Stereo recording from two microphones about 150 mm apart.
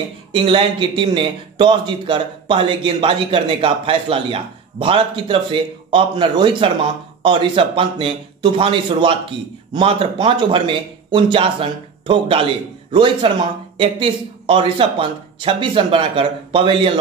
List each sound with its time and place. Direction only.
0.3 s speech: 35° right (ahead or behind)